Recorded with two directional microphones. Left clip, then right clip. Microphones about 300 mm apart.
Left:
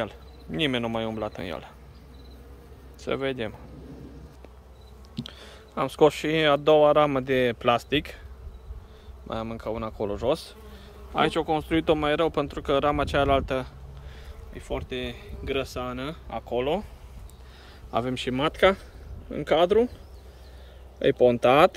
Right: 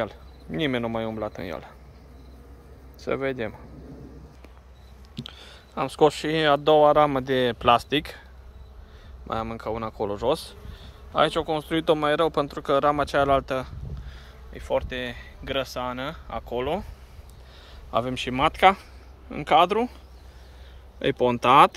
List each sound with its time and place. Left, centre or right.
0.0 s speech: centre
3.0 s speech: centre
5.1 s speech: centre
9.3 s speech: centre
17.9 s speech: centre
21.0 s speech: centre